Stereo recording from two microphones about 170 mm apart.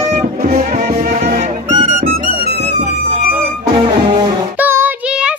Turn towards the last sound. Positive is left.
turn(degrees=-10)  # may be behind; listen again after turning